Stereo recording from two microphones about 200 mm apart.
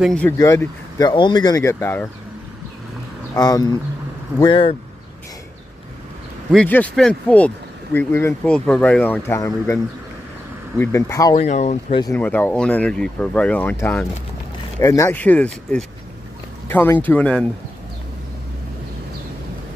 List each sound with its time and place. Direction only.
0.0 s speech: 5° left (ahead or behind)
0.4 s speech: 15° left (ahead or behind)
3.3 s speech: 20° left (ahead or behind)
6.5 s speech: 5° left (ahead or behind)
10.8 s speech: 15° left (ahead or behind)
11.3 s speech: 35° left (ahead or behind)
12.0 s speech: 10° left (ahead or behind)